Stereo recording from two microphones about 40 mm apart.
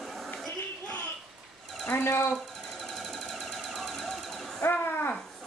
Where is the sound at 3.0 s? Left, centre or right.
Centre.